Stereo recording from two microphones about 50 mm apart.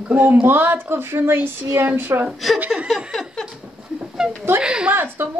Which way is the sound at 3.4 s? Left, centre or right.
Centre.